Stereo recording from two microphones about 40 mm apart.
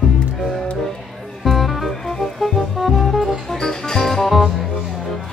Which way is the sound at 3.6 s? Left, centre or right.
Centre.